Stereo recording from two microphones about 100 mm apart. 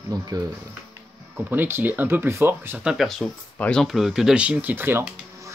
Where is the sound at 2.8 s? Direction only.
Centre (ahead or behind).